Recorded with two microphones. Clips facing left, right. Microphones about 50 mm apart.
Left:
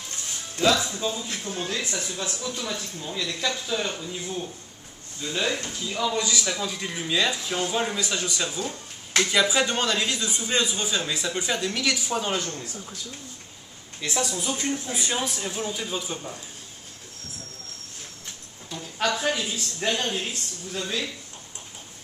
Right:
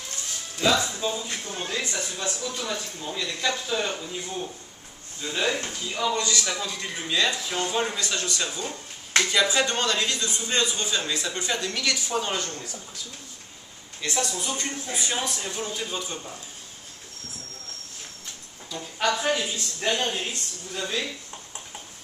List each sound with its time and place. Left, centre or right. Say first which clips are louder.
0.7 s speech: even; centre
5.2 s speech: even; centre
5.5 s speech: right 1 dB; centre
6.1 s speech: even; centre
8.6 s a sound: left 1 dB; centre
9.3 s a man's voice: left 2 dB; centre
14.0 s speech: left 1 dB; centre
18.8 s speech: right 1 dB; centre